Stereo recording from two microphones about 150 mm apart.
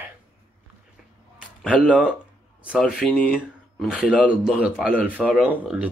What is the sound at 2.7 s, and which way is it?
Speech, 5° left (ahead or behind).